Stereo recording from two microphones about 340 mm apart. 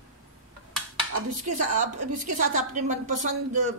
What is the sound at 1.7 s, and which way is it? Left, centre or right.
A woman's voice, right.